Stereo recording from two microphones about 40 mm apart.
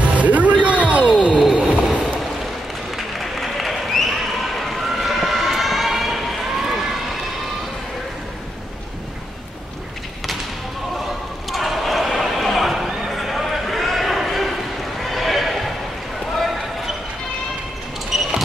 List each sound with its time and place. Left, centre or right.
0.0 s music: right
1.5 s a sound: right
3.2 s applause: centre
4.6 s vehicle: centre
11.5 s a sound: centre
15.0 s horse: centre
16.3 s basketball bounce: centre
18.1 s basketball bounce: centre